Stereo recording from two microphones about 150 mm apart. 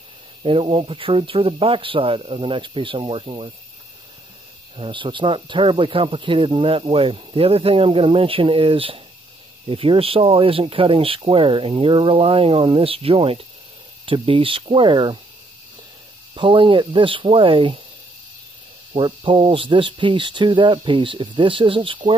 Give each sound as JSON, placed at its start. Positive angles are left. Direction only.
{"t": 0.4, "sound": "speech", "side_deg": -35}
{"t": 4.7, "sound": "speech", "side_deg": -35}
{"t": 16.3, "sound": "speech", "side_deg": -35}
{"t": 18.9, "sound": "speech", "side_deg": -35}